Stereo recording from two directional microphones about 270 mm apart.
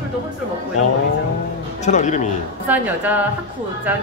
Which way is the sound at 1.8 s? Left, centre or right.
Left.